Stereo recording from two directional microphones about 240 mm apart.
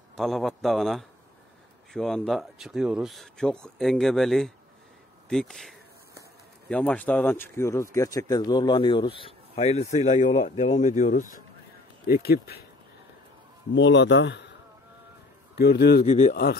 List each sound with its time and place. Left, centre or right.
0.1 s speech: centre; by 12.6 s left
13.7 s speech: left
15.5 s speech: left